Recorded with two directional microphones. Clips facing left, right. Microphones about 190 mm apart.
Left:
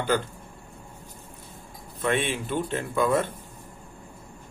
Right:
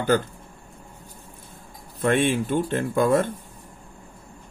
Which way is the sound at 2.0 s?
45° right (ahead or behind).